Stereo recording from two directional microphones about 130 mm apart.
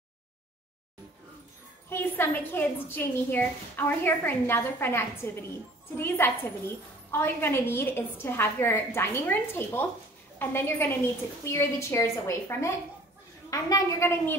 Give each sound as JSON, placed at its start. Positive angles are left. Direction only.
{"t": 1.9, "sound": "a woman's voice", "side_deg": 15}